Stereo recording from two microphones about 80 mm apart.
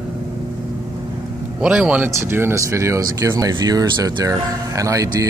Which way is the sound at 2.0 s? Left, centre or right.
Right.